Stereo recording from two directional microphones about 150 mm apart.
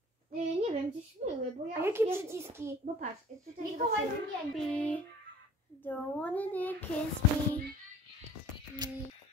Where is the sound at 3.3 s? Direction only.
55° right (ahead or behind).